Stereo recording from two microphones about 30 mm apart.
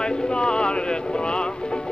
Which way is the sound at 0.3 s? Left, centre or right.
Left.